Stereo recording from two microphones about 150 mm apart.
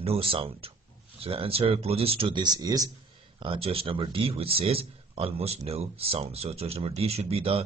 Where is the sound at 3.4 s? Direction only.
35° right (ahead or behind).